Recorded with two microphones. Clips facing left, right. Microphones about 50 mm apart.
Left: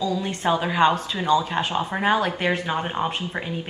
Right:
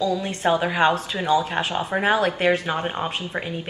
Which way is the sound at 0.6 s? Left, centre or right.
Right.